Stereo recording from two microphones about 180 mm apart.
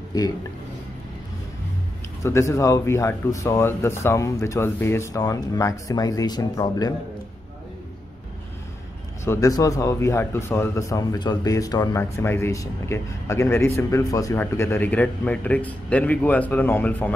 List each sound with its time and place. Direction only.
2.2 s a man's voice: 15° left (ahead or behind)
9.2 s a man's voice: 15° left (ahead or behind)